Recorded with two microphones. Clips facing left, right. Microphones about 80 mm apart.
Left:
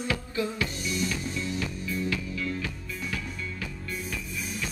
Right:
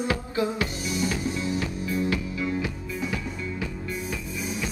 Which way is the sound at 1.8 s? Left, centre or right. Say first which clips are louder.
Right 4 dB; right.